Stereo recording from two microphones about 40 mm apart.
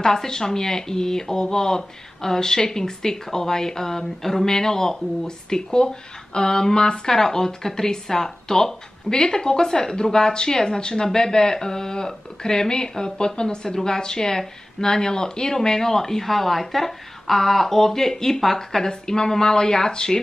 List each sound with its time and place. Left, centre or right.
0.0 s speech: centre